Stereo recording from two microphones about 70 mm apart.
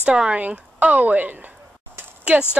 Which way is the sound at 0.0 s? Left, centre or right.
Centre.